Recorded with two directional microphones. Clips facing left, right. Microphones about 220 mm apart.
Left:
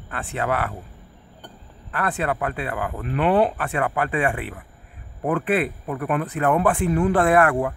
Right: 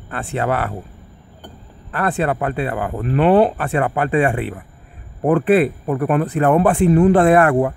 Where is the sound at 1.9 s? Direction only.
30° right (ahead or behind).